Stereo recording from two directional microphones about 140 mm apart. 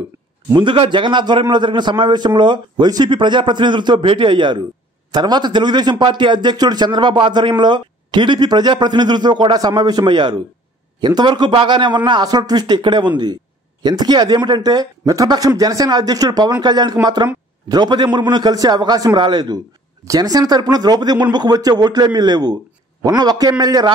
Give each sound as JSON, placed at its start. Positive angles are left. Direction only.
{"t": 0.5, "sound": "a man's voice", "side_deg": -35}